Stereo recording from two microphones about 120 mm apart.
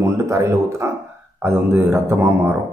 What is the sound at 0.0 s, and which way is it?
A man's voice, 25° right (ahead or behind).